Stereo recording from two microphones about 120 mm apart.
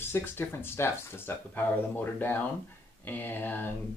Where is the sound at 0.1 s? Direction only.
20° left (ahead or behind).